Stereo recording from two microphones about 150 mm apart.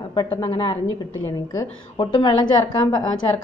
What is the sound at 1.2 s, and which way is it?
A woman's voice, 20° left (ahead or behind).